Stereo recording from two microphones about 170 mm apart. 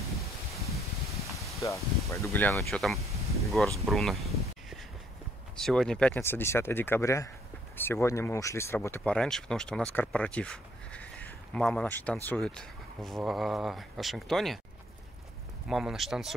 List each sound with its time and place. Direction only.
1.6 s speech: 20° left (ahead or behind); by 3.0 s centre (ahead or behind)
3.4 s a sound: centre (ahead or behind)
5.6 s speech: 5° left (ahead or behind)
15.7 s speech: centre (ahead or behind)